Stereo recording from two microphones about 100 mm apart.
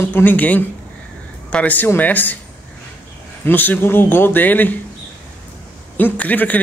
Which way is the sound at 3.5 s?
20° left (ahead or behind).